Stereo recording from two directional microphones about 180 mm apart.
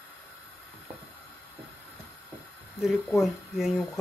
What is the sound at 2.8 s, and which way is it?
Speech, centre (ahead or behind).